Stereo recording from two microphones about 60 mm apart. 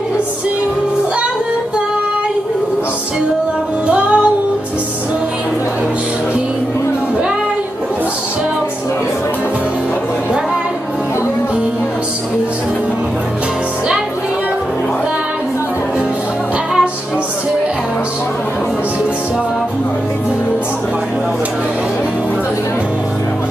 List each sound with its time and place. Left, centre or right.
3.8 s music: right